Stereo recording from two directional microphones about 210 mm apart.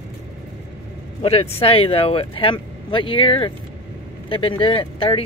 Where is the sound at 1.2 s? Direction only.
30° left (ahead or behind).